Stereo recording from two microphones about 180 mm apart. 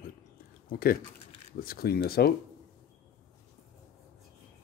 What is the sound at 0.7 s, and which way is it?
Speech, 55° left (ahead or behind).